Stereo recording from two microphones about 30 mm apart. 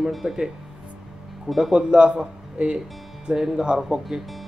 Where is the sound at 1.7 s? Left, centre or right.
Right.